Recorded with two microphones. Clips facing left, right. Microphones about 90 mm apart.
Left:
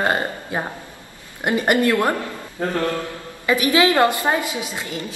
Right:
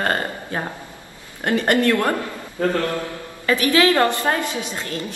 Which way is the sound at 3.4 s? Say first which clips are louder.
Even; 15° left (ahead or behind).